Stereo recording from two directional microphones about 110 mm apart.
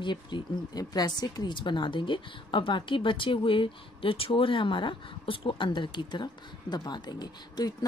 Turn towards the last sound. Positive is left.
turn(degrees=40)  # may be behind; listen again after turning